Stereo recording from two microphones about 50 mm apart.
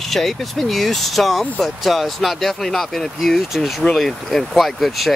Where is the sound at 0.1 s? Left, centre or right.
Centre.